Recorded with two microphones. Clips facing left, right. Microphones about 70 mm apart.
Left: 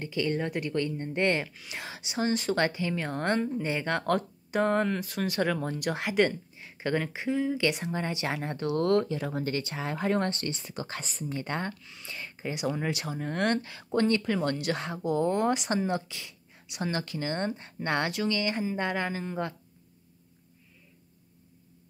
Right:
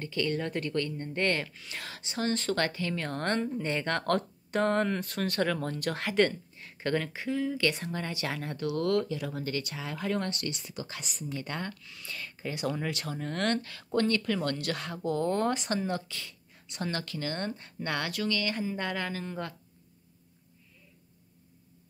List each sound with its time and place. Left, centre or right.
0.0 s speech: centre